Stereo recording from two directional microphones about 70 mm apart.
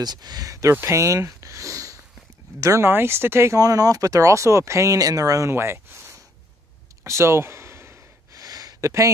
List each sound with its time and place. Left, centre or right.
0.0 s speech: right
2.9 s speech: right
3.5 s speech: right
5.5 s speech: right
7.0 s a sound: right
8.3 s a sound: right